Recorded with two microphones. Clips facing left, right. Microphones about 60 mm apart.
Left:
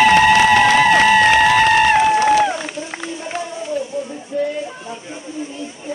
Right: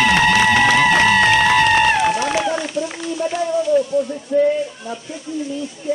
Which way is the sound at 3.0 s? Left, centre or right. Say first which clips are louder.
Right 5 dB; left.